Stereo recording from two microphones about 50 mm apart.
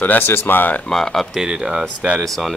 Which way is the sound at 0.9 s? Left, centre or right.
Centre.